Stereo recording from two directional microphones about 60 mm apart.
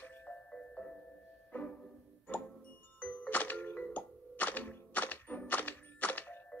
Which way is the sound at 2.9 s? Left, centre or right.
Left.